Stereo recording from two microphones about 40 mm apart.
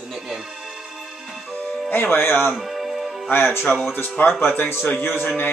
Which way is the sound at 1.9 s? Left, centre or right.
Left.